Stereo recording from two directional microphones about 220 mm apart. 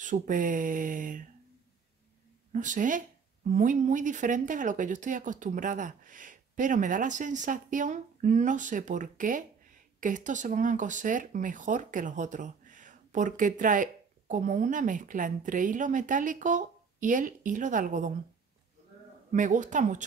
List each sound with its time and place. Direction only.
0.0 s speech: 35° right (ahead or behind)
2.5 s speech: 35° right (ahead or behind)
19.3 s speech: 35° right (ahead or behind)